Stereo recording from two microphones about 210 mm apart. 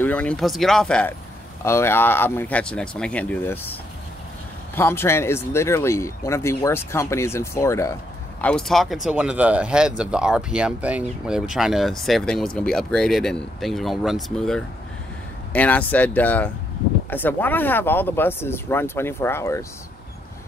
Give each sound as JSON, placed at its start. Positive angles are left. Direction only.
{"t": 0.0, "sound": "speech", "side_deg": 5}
{"t": 4.7, "sound": "speech", "side_deg": 10}